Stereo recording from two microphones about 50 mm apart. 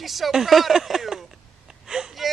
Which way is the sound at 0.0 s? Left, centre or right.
Centre.